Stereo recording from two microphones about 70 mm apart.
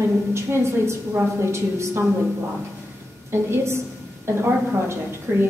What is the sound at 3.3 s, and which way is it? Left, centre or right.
Speech, right.